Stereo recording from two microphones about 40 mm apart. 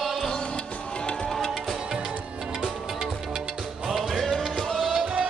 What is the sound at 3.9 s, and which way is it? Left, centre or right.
Music, centre.